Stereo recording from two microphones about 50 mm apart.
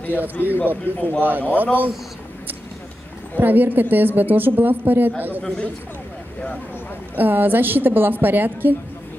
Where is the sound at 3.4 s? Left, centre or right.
Right.